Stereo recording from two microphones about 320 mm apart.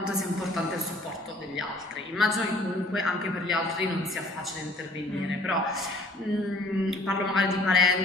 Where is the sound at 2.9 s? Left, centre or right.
Centre.